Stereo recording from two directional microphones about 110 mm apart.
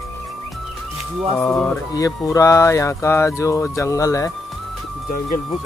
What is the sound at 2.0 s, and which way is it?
Speech, 30° left (ahead or behind).